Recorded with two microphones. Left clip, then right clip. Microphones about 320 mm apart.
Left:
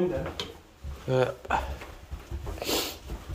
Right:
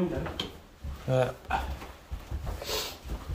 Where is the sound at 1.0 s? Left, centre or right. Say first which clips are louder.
Left 2 dB; centre.